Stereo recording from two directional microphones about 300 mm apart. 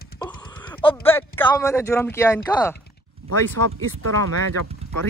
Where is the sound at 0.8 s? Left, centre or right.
Centre.